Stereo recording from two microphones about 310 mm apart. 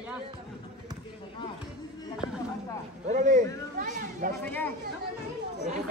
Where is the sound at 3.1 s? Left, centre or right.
Right.